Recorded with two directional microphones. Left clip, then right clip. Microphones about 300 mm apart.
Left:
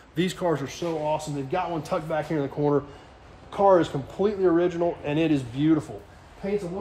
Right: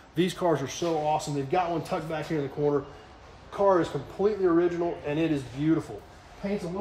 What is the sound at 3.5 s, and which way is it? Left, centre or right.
Speech, left.